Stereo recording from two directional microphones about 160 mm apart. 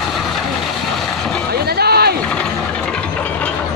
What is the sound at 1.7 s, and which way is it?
Boat, 80° right.